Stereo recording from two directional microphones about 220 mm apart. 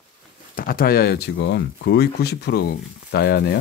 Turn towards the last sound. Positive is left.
turn(degrees=50)  # may be behind; listen again after turning